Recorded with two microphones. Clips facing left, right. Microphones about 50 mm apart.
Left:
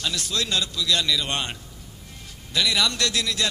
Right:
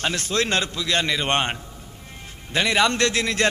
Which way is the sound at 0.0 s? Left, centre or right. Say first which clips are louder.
Right 4 dB; right.